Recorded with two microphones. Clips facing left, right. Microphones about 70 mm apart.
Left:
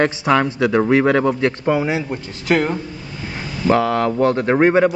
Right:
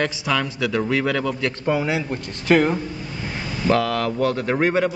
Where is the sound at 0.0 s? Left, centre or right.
Left.